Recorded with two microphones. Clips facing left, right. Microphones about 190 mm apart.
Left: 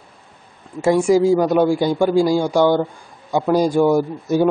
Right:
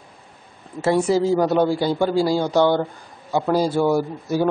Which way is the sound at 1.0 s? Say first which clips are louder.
Left 4 dB; 10° left (ahead or behind).